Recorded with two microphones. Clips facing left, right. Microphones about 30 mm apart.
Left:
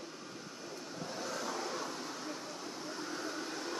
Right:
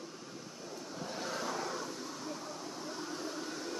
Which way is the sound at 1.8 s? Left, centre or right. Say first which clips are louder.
Left 1 dB; centre.